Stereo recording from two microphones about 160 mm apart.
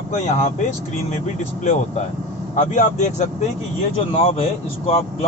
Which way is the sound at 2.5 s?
50° left (ahead or behind).